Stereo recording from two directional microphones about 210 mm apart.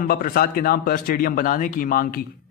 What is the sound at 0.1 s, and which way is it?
A man's voice, 45° left (ahead or behind).